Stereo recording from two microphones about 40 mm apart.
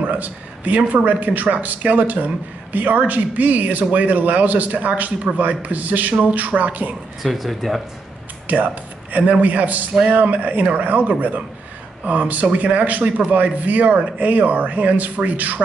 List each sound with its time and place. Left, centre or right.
0.0 s speech: right
7.2 s speech: centre
8.5 s speech: right